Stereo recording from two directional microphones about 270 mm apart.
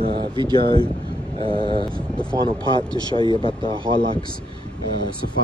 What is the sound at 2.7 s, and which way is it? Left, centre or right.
Speech, centre.